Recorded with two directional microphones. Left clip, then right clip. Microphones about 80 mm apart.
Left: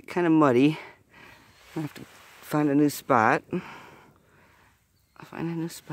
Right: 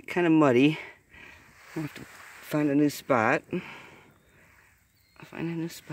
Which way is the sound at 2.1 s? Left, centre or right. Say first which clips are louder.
Right 4 dB; centre.